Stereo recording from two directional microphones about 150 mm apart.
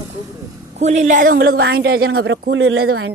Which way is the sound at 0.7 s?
50° right (ahead or behind).